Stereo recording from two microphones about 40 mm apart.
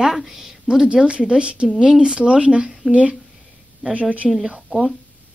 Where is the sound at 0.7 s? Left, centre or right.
Centre.